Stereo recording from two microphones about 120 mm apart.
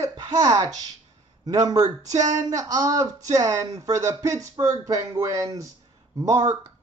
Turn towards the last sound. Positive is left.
turn(degrees=-30)  # may be behind; listen again after turning